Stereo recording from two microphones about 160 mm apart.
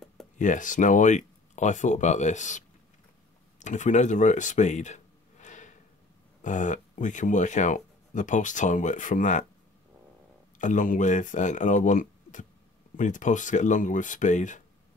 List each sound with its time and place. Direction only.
0.4 s speech: 50° left (ahead or behind)
3.5 s a sound: 50° left (ahead or behind)
6.4 s speech: 50° left (ahead or behind)
10.6 s speech: 55° left (ahead or behind)